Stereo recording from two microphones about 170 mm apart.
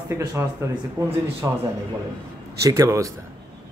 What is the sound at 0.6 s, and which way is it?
Speech, 15° right (ahead or behind).